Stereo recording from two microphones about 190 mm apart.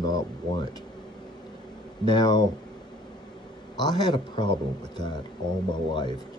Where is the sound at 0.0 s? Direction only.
20° left (ahead or behind).